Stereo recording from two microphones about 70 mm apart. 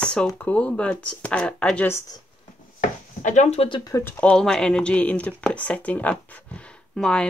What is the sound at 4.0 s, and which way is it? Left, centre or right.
Speech, left.